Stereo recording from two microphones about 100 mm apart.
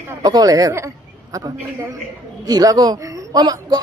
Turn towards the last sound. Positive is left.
turn(degrees=-40)  # may be behind; listen again after turning